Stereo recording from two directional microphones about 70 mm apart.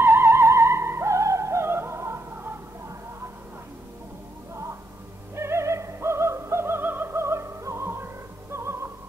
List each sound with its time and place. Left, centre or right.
0.0 s music: right
5.3 s music: right